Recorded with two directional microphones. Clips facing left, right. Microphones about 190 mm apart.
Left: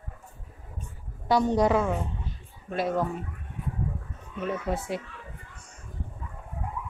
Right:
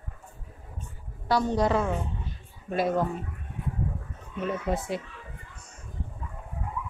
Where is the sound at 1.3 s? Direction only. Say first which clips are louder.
Left 2 dB; 15° left (ahead or behind).